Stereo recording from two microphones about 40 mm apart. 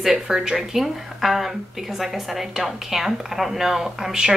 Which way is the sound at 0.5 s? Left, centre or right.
Centre.